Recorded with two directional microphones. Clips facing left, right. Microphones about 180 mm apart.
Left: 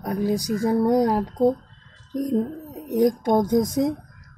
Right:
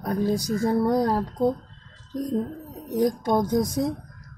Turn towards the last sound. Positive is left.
turn(degrees=20)  # may be behind; listen again after turning